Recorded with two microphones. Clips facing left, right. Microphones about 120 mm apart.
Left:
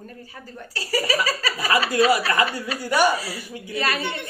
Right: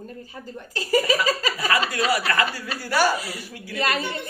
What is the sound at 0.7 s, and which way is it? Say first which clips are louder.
A man's voice: right 3 dB; 35° left (ahead or behind).